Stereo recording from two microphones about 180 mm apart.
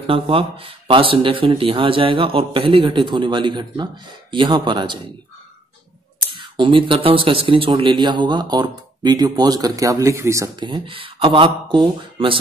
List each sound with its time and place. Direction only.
0.0 s speech: 30° right (ahead or behind)
6.3 s speech: 30° right (ahead or behind)